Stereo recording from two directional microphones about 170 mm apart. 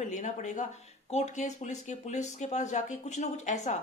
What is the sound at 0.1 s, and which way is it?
A woman's voice, 45° left (ahead or behind).